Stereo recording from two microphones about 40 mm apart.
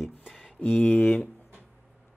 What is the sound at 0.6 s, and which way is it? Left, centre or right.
Speech, left.